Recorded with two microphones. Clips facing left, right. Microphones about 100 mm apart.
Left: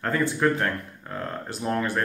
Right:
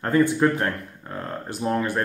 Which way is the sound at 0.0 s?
20° right (ahead or behind).